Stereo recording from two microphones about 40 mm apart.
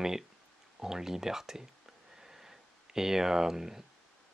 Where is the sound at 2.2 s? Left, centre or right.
Centre.